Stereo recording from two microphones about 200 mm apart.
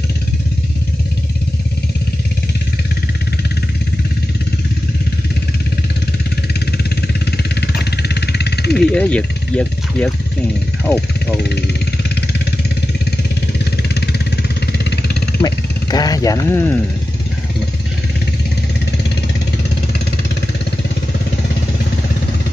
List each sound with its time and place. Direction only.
6.8 s vehicle: 55° left (ahead or behind)
8.9 s speech: 5° left (ahead or behind)
14.7 s vehicle: 55° left (ahead or behind)
15.4 s speech: 20° left (ahead or behind)